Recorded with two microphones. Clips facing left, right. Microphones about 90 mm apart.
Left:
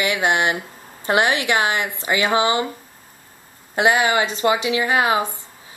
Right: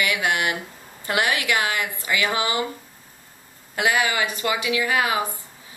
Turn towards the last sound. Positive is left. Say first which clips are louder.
# left 4 dB
turn(degrees=25)  # may be behind; listen again after turning